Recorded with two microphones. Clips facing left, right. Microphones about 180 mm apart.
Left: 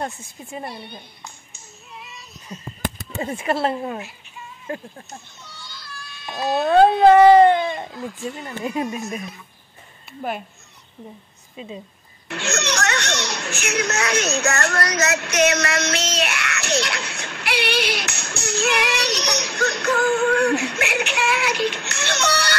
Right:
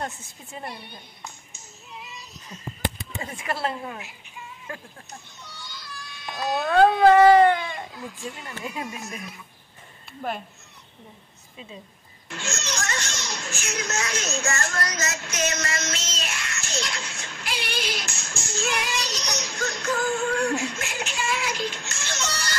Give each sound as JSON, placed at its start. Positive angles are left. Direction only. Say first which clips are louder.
{"t": 0.2, "sound": "a woman's voice", "louder": "left 6 dB", "side_deg": 10}
{"t": 2.8, "sound": "a sound", "louder": "left 4 dB", "side_deg": 45}
{"t": 3.3, "sound": "speech", "louder": "left 7 dB", "side_deg": 25}
{"t": 5.4, "sound": "children playing", "louder": "even", "side_deg": -15}
{"t": 6.4, "sound": "speech", "louder": "left 4 dB", "side_deg": 25}
{"t": 10.2, "sound": "a woman's voice", "louder": "left 3 dB", "side_deg": 15}
{"t": 12.3, "sound": "a sound", "louder": "left 8 dB", "side_deg": 70}